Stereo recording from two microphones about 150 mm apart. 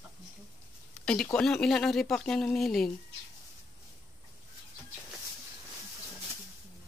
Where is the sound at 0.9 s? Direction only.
5° left (ahead or behind).